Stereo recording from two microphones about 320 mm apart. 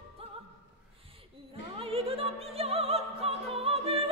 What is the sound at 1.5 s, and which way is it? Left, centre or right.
Opera, centre.